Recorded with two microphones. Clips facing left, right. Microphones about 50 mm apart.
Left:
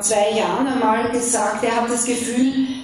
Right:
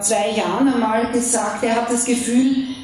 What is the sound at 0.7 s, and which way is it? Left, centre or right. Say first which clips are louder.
A woman's voice: even; left.